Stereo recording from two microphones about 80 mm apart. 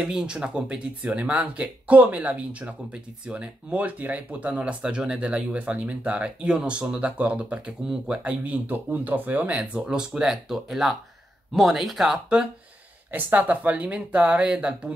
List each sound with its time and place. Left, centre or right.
0.0 s speech: centre
13.1 s speech: centre